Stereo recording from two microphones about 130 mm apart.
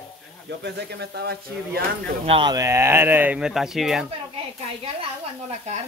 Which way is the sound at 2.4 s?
30° right (ahead or behind).